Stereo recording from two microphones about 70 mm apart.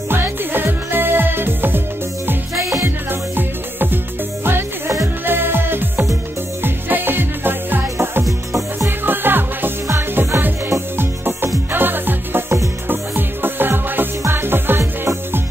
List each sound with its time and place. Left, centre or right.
0.1 s music: right
3.1 s music: right
8.3 s music: right
9.8 s music: right